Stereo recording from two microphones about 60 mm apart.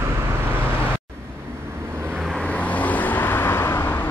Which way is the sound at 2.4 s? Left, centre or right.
Left.